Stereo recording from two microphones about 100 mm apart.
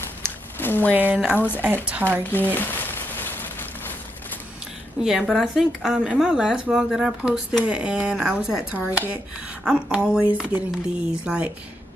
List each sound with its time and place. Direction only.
0.6 s speech: 20° left (ahead or behind)
1.1 s a woman's voice: 15° right (ahead or behind)
2.5 s a sound: 20° left (ahead or behind)
5.0 s speech: centre (ahead or behind)